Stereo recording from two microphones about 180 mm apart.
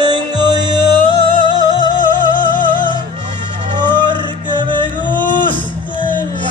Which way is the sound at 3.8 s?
25° right (ahead or behind).